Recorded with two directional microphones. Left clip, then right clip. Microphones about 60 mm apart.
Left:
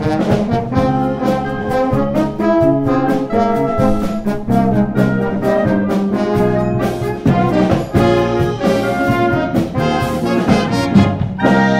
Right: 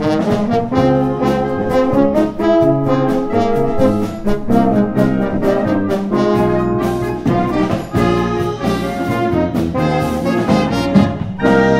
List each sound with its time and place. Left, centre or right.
0.7 s brass instrument: centre
2.4 s brass instrument: centre
6.1 s brass instrument: centre
10.3 s music: centre